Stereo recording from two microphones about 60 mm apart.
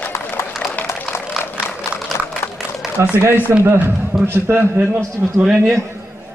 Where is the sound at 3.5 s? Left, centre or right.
Right.